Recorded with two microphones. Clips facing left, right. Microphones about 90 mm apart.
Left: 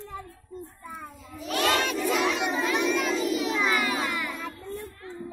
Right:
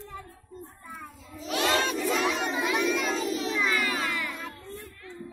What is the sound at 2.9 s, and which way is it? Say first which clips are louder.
Child singing: left 2 dB; centre (ahead or behind).